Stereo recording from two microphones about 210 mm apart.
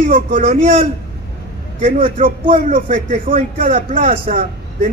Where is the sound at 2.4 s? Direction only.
40° right (ahead or behind).